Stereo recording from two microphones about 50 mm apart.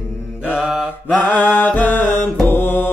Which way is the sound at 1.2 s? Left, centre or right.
Left.